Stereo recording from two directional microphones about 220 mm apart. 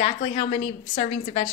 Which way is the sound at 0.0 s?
30° left (ahead or behind).